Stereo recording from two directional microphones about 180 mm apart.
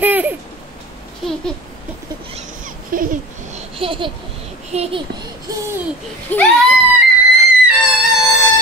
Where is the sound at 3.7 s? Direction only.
30° right (ahead or behind).